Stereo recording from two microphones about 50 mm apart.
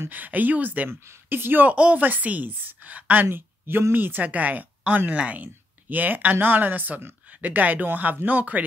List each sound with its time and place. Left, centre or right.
0.1 s a woman's voice: right
1.7 s speech: right
2.0 s a woman's voice: right